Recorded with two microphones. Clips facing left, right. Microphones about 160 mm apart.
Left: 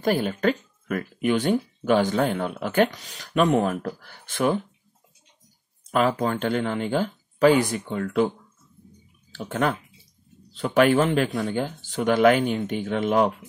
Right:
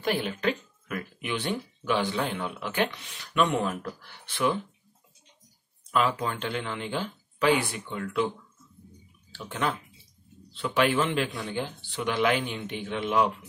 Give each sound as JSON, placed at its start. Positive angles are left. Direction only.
{"t": 0.0, "sound": "speech", "side_deg": 45}
{"t": 5.9, "sound": "speech", "side_deg": 45}
{"t": 9.3, "sound": "speech", "side_deg": 45}